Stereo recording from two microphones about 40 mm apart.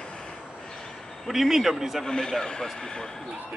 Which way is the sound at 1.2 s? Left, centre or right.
Centre.